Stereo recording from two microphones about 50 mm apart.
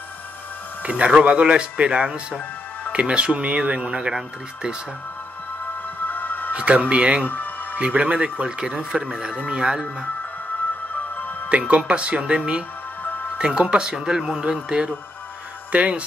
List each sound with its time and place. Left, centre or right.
0.8 s speech: right
6.0 s music: left
6.5 s speech: right
7.2 s music: left
7.8 s speech: right
11.4 s speech: right
15.7 s speech: right